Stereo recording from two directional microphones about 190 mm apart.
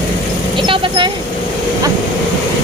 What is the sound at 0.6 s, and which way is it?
Vehicle, 25° right (ahead or behind).